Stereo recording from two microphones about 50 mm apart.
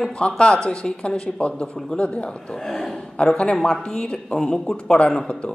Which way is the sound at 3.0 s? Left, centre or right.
Centre.